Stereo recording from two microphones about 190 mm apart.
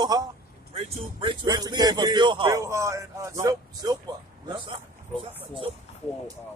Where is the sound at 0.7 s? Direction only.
30° right (ahead or behind).